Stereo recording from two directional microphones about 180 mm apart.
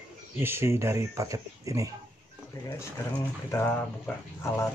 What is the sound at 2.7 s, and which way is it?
Speech, 15° left (ahead or behind).